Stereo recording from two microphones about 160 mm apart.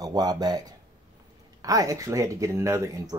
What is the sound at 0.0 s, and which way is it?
Speech, 25° right (ahead or behind).